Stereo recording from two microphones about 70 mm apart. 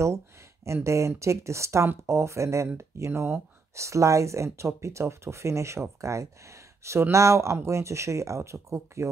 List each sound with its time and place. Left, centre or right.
0.8 s speech: right